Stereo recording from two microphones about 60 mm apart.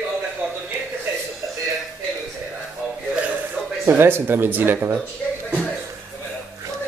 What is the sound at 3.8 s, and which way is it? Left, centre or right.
Speech, right.